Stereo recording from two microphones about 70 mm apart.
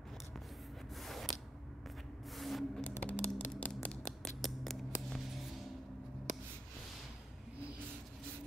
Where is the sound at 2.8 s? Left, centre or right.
Left.